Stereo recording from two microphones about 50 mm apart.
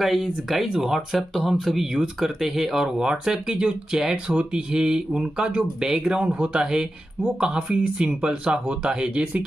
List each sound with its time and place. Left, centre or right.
0.0 s speech: centre; by 9.4 s right